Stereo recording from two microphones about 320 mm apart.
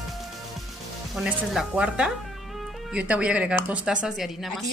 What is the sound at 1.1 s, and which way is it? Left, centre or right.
A woman's voice, centre.